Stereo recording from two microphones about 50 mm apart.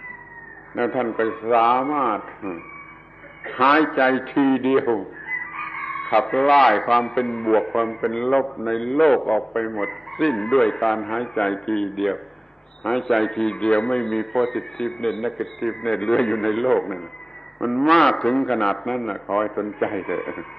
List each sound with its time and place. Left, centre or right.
0.7 s a man's voice: centre
4.3 s a man's voice: centre
13.6 s a man's voice: centre
14.0 s a man's voice: centre